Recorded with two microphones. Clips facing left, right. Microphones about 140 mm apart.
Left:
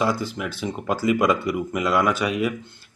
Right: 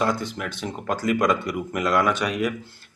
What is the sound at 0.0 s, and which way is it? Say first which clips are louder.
Speech: left 1 dB; 5° left (ahead or behind).